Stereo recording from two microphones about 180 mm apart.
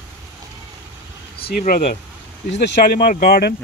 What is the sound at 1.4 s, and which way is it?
Speech, 50° left (ahead or behind).